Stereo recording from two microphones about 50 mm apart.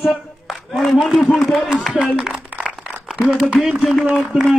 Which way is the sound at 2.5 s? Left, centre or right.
Right.